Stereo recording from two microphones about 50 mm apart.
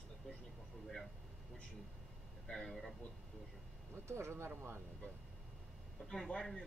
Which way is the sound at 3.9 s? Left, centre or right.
Right.